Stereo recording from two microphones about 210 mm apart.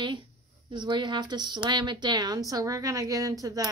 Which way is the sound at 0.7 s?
20° right (ahead or behind).